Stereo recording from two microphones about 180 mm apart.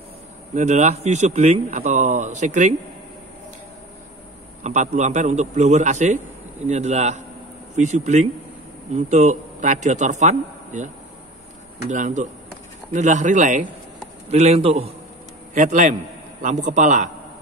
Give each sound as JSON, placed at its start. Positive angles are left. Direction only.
{"t": 0.6, "sound": "a man's voice", "side_deg": -40}
{"t": 4.6, "sound": "a man's voice", "side_deg": -40}
{"t": 11.9, "sound": "a man's voice", "side_deg": -45}